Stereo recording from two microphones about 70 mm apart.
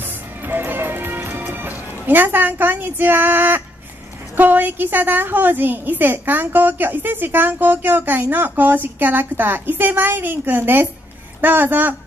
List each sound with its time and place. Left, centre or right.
0.0 s music: right
4.4 s a woman's voice: right